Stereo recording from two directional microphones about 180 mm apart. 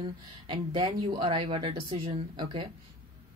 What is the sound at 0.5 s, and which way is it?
A woman's voice, 25° right (ahead or behind).